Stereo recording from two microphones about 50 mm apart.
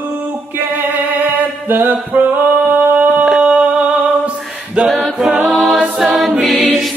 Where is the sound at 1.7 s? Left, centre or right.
Right.